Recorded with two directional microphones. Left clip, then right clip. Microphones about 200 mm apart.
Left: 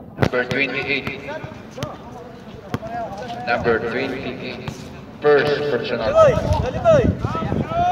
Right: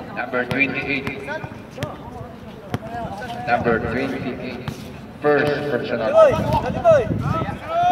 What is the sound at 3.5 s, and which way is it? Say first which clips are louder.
Speech: even; 35° left (ahead or behind).